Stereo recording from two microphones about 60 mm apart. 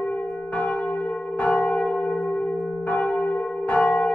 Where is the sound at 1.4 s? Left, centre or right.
Centre.